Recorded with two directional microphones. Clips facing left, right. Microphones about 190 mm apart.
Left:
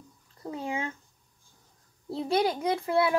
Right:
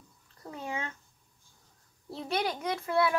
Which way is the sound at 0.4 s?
25° left (ahead or behind).